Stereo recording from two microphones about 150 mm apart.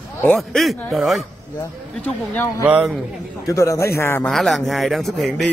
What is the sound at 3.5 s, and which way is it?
Speech, 20° left (ahead or behind).